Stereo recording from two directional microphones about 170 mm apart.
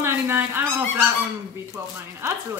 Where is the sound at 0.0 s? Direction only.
15° right (ahead or behind).